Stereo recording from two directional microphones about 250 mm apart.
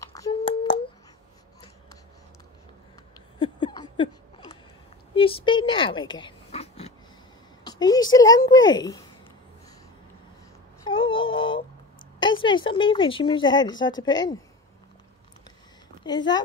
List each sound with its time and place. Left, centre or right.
0.0 s a sound: centre
3.3 s a sound: centre
7.6 s speech: centre
10.9 s synthetic singing: centre
12.2 s speech: centre
16.0 s speech: centre